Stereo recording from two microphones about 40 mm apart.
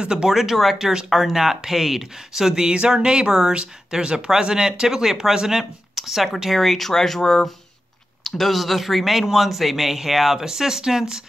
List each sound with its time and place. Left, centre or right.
0.0 s speech: centre
0.3 s speech: centre